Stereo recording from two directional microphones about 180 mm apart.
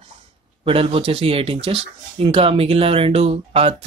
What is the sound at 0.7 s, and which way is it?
Speech, 30° right (ahead or behind).